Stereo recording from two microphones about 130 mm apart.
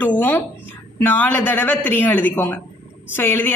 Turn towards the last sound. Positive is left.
turn(degrees=15)  # may be behind; listen again after turning